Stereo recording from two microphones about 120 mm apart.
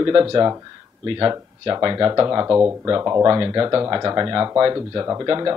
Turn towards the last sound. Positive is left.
turn(degrees=-30)  # may be behind; listen again after turning